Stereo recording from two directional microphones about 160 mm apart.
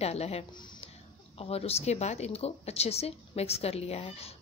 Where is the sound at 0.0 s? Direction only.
40° left (ahead or behind).